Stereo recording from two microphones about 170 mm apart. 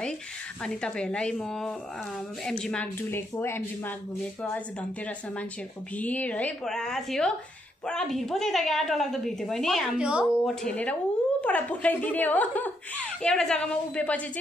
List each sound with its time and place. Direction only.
0.7 s a woman's voice: 5° left (ahead or behind)
5.9 s a woman's voice: 10° left (ahead or behind)